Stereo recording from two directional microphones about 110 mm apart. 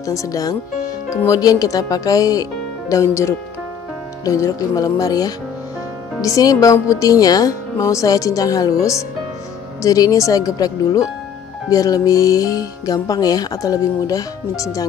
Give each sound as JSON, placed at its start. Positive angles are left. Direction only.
{"t": 0.0, "sound": "speech", "side_deg": 30}